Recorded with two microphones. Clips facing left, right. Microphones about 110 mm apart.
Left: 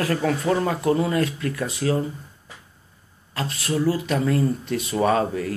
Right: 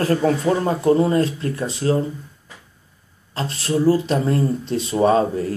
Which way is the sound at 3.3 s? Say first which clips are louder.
Right 3 dB; 30° right (ahead or behind).